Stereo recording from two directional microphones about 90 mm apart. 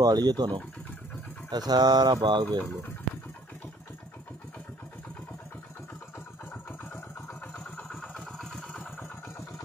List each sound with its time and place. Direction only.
0.0 s speech: 45° right (ahead or behind)
6.1 s vehicle: 20° left (ahead or behind)